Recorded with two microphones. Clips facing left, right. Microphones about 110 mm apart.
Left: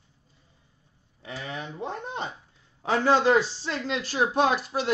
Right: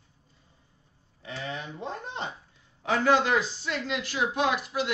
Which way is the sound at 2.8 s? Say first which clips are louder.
Left 1 dB; 30° left (ahead or behind).